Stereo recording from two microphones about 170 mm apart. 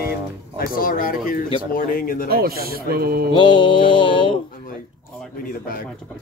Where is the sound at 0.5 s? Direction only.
55° left (ahead or behind).